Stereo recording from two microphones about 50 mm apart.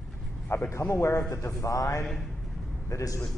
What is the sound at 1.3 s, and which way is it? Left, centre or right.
A man's voice, left.